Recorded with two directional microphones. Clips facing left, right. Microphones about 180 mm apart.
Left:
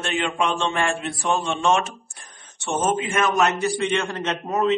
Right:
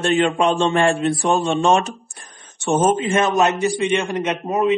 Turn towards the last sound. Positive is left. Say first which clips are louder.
# right 3 dB
turn(degrees=-20)  # may be behind; listen again after turning